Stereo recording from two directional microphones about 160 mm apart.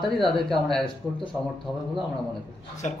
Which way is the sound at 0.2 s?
Centre (ahead or behind).